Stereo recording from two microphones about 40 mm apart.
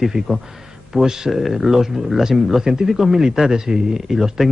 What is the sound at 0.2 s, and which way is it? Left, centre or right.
Speech, right.